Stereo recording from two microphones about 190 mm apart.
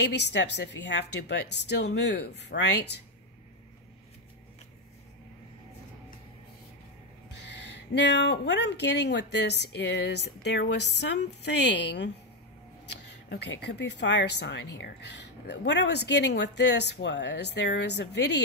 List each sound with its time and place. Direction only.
0.0 s speech: 65° left (ahead or behind)
7.4 s speech: 65° left (ahead or behind)